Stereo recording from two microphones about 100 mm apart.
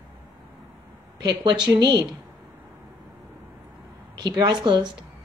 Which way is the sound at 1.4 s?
45° right (ahead or behind).